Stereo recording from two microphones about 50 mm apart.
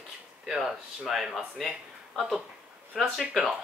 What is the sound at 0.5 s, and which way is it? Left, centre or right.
Speech, centre.